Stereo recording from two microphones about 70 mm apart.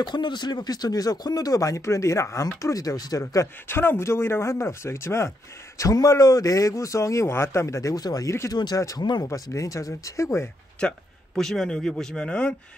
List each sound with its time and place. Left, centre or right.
0.0 s speech: left
3.6 s speech: left
5.8 s a man's voice: left
8.3 s a man's voice: left
8.7 s speech: left
9.0 s speech: left
9.3 s a man's voice: left
10.8 s a man's voice: centre